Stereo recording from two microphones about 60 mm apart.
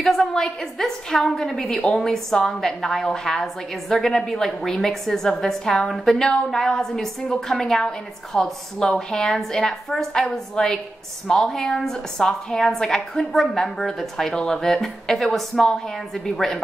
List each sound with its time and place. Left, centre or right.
0.0 s a woman's voice: centre